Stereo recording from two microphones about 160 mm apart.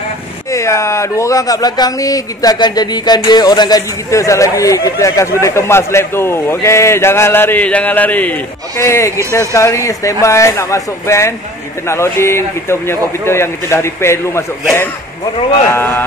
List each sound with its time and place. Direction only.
0.5 s speech: 20° left (ahead or behind)